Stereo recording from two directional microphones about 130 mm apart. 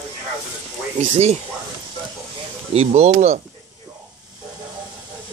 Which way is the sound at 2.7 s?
55° right (ahead or behind).